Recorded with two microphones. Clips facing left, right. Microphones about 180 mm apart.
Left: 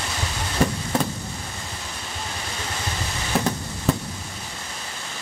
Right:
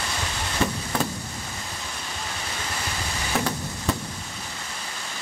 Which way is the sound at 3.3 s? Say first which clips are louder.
Left 3 dB; 35° left (ahead or behind).